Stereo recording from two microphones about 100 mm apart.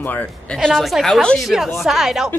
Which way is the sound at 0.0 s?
15° left (ahead or behind).